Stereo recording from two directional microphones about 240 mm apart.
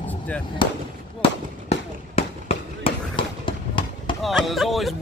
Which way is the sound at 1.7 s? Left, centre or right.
Left.